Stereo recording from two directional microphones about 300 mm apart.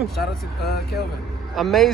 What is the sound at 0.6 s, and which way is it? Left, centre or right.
Speech, left.